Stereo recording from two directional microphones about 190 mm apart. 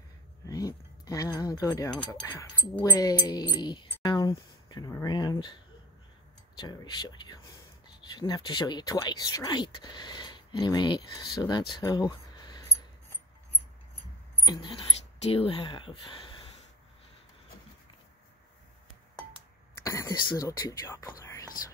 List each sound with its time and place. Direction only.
0.5 s speech: 20° left (ahead or behind)
14.4 s speech: 25° left (ahead or behind)
19.8 s speech: 15° left (ahead or behind)